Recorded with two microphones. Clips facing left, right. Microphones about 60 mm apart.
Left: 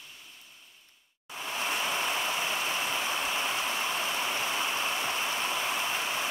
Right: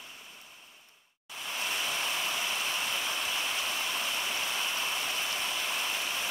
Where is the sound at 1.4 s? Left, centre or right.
Left.